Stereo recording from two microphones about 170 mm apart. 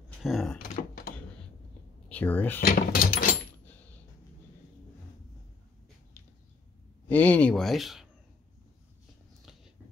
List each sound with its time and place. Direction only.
0.2 s door: centre (ahead or behind)
2.0 s speech: 10° left (ahead or behind)
2.6 s speech: 60° left (ahead or behind)
7.1 s speech: 10° left (ahead or behind)